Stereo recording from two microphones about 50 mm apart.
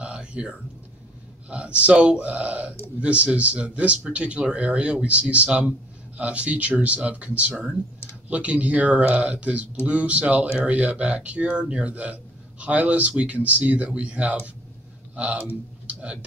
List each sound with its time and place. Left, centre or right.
0.0 s a sound: right
1.5 s a man's voice: right
15.9 s whispering: right